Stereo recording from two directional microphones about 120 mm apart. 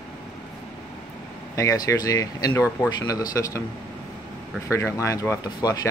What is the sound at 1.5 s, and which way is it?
Speech, 25° left (ahead or behind).